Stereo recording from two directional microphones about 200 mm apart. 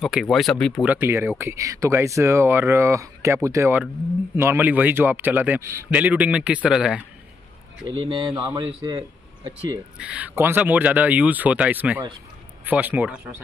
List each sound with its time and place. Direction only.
0.0 s speech: centre (ahead or behind)
0.8 s speech: 10° right (ahead or behind)
7.9 s a man's voice: 25° right (ahead or behind)
9.9 s speech: 5° right (ahead or behind)